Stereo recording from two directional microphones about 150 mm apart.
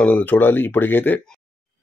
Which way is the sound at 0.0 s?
10° left (ahead or behind).